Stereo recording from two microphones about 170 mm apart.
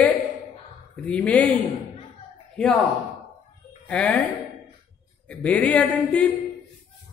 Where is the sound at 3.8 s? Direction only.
5° left (ahead or behind).